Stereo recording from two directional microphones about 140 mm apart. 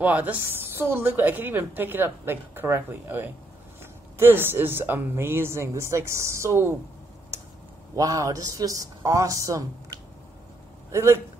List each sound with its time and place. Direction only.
0.0 s a woman's voice: 10° right (ahead or behind)
7.9 s a man's voice: 25° right (ahead or behind)